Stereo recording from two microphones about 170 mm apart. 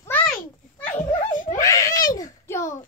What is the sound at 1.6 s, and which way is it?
A child's voice, 20° left (ahead or behind).